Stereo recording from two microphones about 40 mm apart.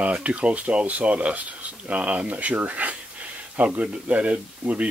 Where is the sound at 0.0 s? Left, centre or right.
Right.